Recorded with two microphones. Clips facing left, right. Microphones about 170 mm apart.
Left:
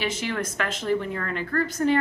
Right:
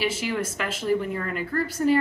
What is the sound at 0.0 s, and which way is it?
A woman's voice, 5° right (ahead or behind).